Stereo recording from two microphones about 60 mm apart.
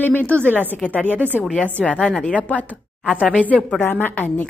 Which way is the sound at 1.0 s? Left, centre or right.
Right.